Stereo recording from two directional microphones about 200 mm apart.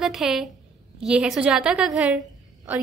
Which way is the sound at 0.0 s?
Centre (ahead or behind).